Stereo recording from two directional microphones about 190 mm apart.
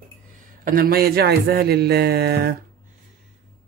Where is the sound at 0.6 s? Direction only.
50° right (ahead or behind).